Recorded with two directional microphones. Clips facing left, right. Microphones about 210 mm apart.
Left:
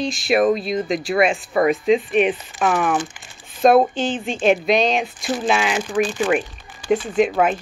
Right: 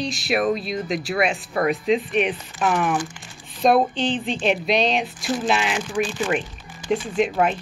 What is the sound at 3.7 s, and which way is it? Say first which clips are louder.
Speech: left 1 dB; 45° left (ahead or behind).